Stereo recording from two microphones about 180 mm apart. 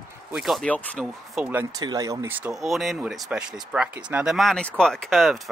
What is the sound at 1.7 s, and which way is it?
Speech, 20° right (ahead or behind).